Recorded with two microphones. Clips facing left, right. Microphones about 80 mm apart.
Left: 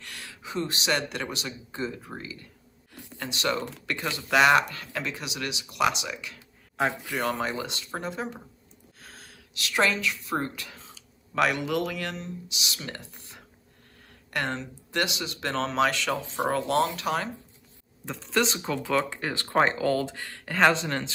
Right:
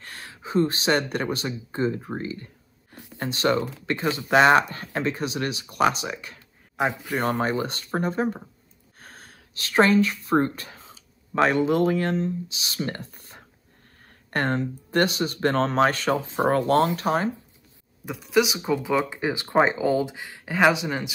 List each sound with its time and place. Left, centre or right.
0.0 s speech: right
3.0 s a sound: right
3.3 s speech: right
3.5 s speech: centre; by 6.4 s right
6.8 s speech: centre
7.2 s speech: right
18.0 s speech: centre